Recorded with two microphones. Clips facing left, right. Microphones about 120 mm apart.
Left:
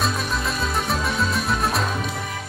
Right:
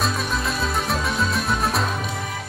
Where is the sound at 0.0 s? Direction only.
Centre (ahead or behind).